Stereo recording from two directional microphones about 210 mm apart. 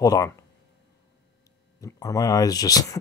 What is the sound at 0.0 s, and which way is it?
Speech, 15° left (ahead or behind).